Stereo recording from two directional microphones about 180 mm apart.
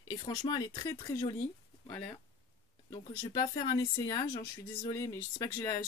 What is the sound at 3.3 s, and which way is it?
Speech, 20° left (ahead or behind).